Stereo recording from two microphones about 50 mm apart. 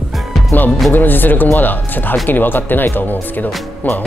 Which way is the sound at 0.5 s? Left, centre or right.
Left.